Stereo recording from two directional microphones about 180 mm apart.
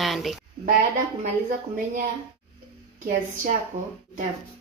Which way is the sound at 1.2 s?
45° right (ahead or behind).